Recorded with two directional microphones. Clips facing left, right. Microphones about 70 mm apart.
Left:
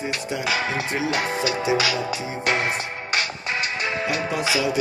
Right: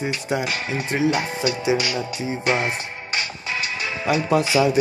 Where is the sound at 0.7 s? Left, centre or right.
Left.